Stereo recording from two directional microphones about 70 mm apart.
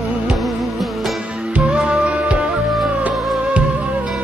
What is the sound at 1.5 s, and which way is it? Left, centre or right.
Music, centre.